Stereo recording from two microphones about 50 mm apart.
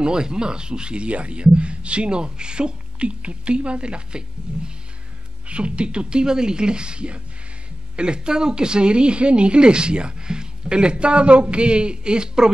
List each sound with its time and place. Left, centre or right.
0.0 s a woman's voice: centre